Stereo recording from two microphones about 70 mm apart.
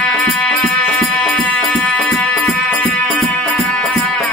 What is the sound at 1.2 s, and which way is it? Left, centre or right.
Music, left.